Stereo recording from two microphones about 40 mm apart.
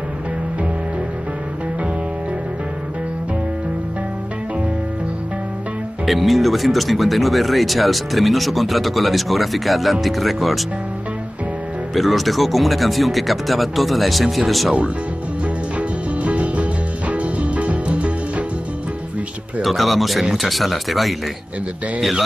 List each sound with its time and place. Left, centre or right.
6.0 s speech: centre
11.9 s speech: centre
16.2 s music: right
19.6 s speech: centre